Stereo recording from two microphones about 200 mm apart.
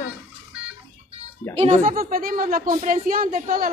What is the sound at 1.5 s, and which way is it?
A woman's voice, 45° right (ahead or behind).